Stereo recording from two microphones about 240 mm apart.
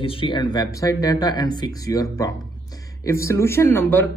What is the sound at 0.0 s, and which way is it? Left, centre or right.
Speech, left.